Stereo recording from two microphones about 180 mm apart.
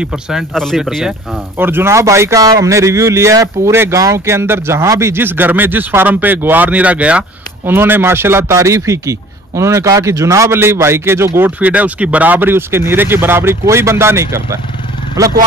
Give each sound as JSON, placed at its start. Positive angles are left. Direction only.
{"t": 0.0, "sound": "a man's voice", "side_deg": -5}